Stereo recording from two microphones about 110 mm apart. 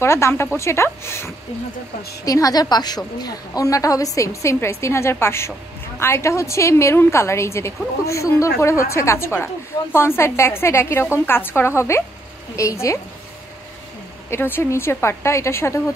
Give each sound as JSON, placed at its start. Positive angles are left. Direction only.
{"t": 0.0, "sound": "a woman's voice", "side_deg": 25}
{"t": 14.3, "sound": "a woman's voice", "side_deg": 20}